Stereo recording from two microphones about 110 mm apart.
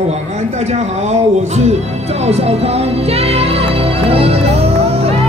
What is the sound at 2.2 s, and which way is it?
Music, 70° right (ahead or behind).